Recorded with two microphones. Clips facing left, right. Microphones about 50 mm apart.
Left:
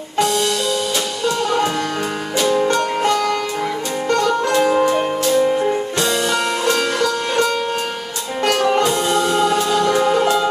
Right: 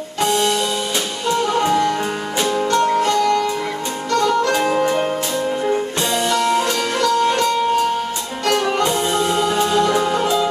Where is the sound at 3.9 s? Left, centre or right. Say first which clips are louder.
Left 2 dB; left.